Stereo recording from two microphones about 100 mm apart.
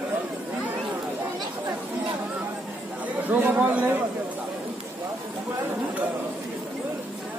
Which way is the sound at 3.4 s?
15° right (ahead or behind).